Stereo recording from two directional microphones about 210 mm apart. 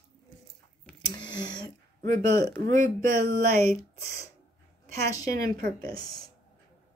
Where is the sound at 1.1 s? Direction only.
20° left (ahead or behind).